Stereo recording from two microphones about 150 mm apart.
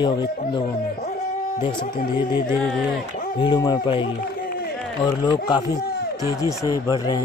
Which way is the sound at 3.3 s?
30° left (ahead or behind).